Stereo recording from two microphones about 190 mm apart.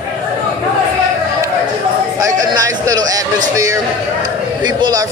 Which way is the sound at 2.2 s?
20° right (ahead or behind).